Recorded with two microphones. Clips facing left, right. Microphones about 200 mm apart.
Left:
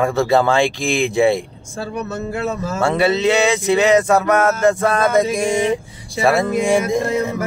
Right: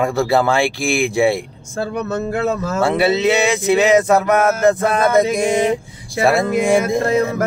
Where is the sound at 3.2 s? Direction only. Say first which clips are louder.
Even; 15° right (ahead or behind).